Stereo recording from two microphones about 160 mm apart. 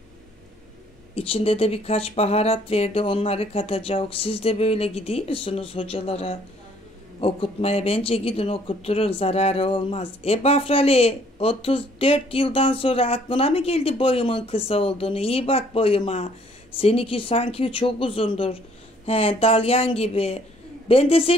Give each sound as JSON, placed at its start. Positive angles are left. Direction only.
{"t": 1.1, "sound": "speech", "side_deg": 35}